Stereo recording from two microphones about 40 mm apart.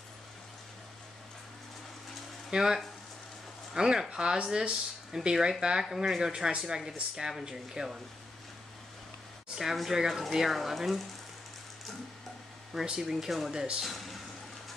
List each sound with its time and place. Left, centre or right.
2.5 s speech: centre
9.6 s speech: centre
12.8 s speech: centre
13.1 s speech: centre
13.9 s water: centre